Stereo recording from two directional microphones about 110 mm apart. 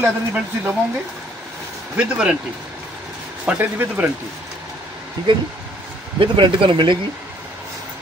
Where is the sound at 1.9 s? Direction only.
10° right (ahead or behind).